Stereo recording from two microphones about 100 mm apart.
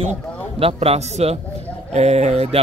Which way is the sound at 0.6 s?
75° right (ahead or behind).